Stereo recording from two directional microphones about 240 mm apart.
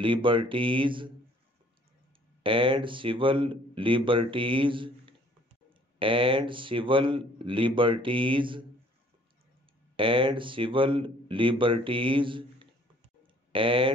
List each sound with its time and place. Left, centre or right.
0.0 s speech: right
2.4 s speech: right
9.9 s speech: right